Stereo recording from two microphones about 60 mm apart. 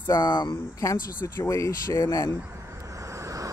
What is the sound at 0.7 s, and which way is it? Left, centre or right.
Speech, left.